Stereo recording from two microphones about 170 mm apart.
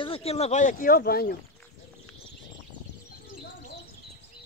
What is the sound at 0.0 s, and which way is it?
Speech, 35° left (ahead or behind).